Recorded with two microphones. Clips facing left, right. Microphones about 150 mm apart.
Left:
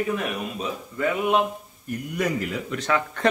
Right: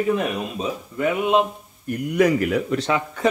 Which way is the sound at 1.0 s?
20° right (ahead or behind).